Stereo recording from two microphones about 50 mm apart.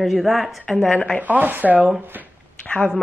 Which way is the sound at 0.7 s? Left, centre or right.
Centre.